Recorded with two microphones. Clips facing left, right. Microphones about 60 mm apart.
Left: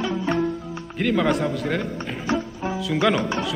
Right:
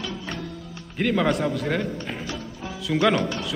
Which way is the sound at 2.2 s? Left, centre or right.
Left.